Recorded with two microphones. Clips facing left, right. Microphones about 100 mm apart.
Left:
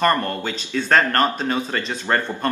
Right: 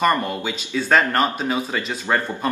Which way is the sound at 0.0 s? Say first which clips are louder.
Even; 10° right (ahead or behind).